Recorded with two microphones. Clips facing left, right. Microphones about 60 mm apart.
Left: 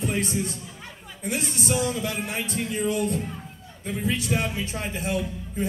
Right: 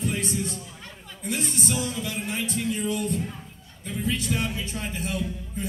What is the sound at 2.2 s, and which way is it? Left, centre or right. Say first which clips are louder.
A man's voice: right 1 dB; left.